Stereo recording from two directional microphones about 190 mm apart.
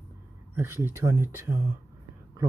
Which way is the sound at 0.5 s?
10° right (ahead or behind).